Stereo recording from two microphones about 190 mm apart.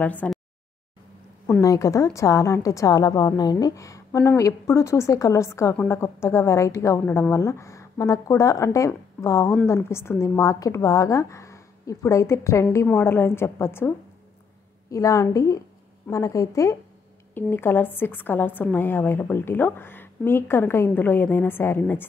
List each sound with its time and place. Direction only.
0.0 s a woman's voice: 10° left (ahead or behind)
1.6 s a woman's voice: 15° left (ahead or behind)